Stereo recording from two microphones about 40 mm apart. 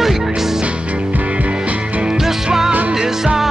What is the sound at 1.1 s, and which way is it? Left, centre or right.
Music, right.